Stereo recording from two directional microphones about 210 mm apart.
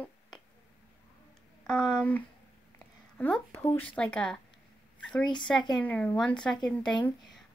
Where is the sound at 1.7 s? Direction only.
5° left (ahead or behind).